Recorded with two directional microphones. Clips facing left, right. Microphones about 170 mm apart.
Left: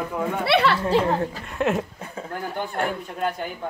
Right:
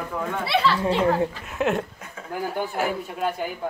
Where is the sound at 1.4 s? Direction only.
Centre (ahead or behind).